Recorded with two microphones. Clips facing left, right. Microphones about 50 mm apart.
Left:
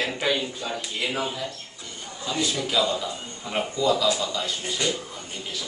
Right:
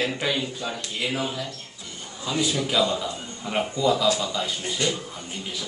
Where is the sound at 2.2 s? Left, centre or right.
Centre.